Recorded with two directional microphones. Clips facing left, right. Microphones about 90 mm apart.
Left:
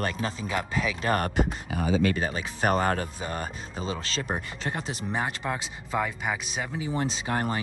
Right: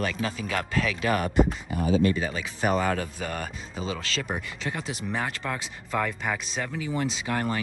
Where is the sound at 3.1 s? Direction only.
30° left (ahead or behind).